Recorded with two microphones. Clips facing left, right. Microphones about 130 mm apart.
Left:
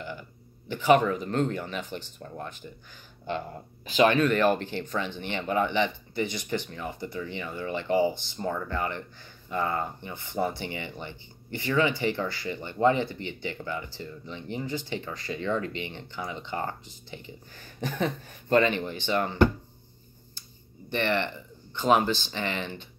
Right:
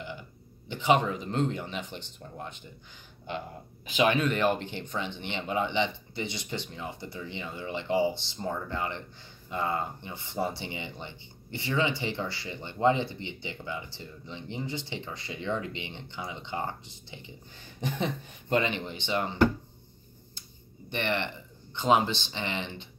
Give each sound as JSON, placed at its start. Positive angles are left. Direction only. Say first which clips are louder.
{"t": 0.7, "sound": "speech", "louder": "left 4 dB", "side_deg": -20}
{"t": 4.0, "sound": "speech", "louder": "left 4 dB", "side_deg": -10}
{"t": 20.9, "sound": "speech", "louder": "left 3 dB", "side_deg": -15}